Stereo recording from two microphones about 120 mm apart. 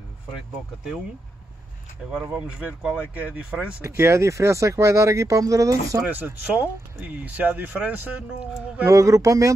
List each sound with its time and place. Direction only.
2.3 s speech: 10° right (ahead or behind)
3.8 s speech: 25° right (ahead or behind)
6.0 s speech: 15° right (ahead or behind)
8.8 s speech: 25° right (ahead or behind)